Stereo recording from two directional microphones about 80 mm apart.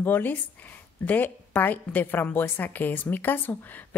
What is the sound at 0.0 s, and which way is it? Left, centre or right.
A woman's voice, left.